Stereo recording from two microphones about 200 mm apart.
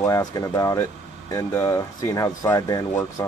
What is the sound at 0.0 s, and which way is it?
Speech, 20° left (ahead or behind).